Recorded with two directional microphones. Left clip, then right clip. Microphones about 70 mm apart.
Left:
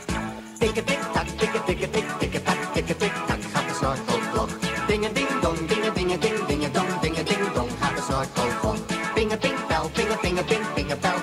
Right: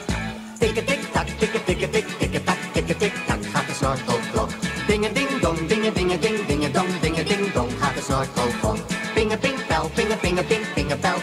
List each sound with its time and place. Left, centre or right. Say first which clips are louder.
0.6 s music: right 2 dB; right
10.5 s music: right 2 dB; right